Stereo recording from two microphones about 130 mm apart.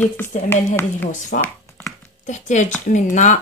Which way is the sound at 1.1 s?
75° left (ahead or behind).